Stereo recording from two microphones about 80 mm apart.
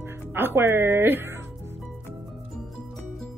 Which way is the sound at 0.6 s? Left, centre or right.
Right.